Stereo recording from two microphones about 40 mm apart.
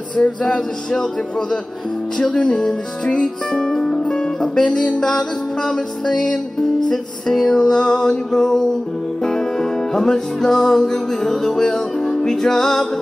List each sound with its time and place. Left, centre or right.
0.1 s music: left
0.6 s music: centre
2.1 s music: left
3.7 s music: centre
4.0 s music: left